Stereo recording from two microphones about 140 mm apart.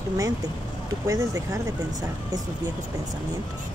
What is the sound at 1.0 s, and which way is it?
Speech, 25° right (ahead or behind).